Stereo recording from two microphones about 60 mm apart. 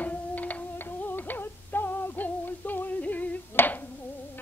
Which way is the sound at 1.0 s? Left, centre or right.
Left.